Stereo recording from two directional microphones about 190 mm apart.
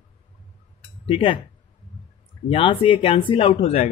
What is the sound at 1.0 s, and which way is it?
Speech, 25° left (ahead or behind).